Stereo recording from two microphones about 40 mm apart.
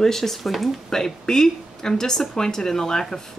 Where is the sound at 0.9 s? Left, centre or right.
Centre.